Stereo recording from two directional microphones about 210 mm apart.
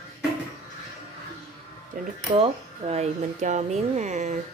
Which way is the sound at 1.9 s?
40° right (ahead or behind).